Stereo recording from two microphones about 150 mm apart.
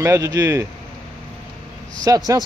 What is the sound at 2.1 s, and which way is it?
Speech, 20° right (ahead or behind).